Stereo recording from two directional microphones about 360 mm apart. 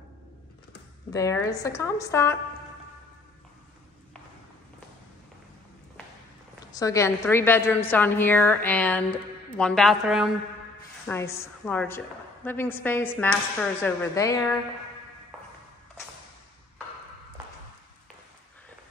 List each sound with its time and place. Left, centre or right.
1.1 s a woman's voice: centre
6.7 s a woman's voice: centre